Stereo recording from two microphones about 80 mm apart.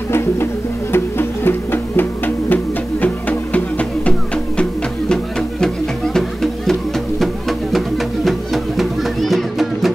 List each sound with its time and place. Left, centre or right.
0.1 s music: left; by 9.9 s centre